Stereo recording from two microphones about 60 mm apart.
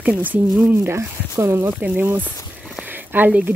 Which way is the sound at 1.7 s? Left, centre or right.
Right.